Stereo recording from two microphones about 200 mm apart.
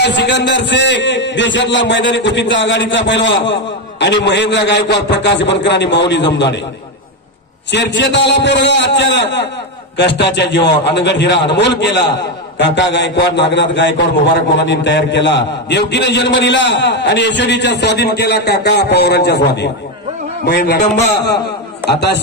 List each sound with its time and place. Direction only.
0.0 s a man's voice: 60° left (ahead or behind)
7.7 s a man's voice: 60° left (ahead or behind)